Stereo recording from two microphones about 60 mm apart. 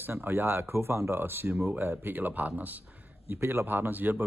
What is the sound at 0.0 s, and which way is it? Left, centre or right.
Speech, right.